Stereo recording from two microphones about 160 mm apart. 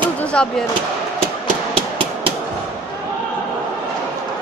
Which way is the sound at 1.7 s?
35° right (ahead or behind).